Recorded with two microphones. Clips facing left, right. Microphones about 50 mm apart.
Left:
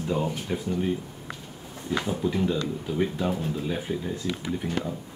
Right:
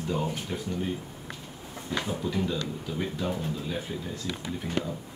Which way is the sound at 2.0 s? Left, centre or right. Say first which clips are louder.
Left 3 dB; centre.